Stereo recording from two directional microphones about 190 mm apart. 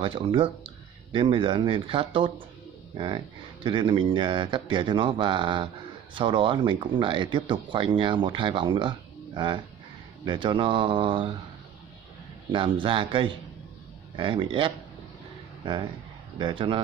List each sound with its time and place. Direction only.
0.0 s speech: 25° right (ahead or behind)
12.5 s speech: 25° right (ahead or behind)